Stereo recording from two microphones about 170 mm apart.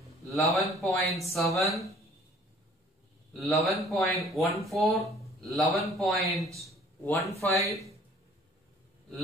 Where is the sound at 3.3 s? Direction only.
Centre (ahead or behind).